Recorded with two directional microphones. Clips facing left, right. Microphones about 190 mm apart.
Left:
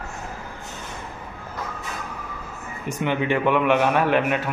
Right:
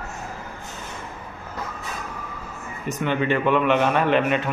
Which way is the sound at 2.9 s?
15° left (ahead or behind).